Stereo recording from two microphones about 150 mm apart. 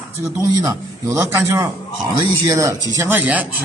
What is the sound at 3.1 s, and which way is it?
Speech, 10° right (ahead or behind).